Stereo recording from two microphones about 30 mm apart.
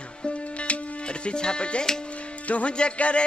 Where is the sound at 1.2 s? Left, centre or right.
Left.